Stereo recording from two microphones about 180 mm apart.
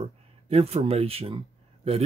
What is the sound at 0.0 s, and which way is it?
Speech, 35° right (ahead or behind).